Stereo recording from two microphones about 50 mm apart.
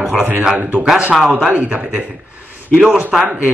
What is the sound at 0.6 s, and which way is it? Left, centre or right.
Speech, right.